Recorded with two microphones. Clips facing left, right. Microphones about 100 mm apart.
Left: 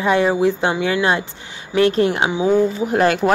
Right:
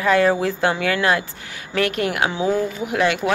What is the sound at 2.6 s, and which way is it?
Speech, 35° left (ahead or behind).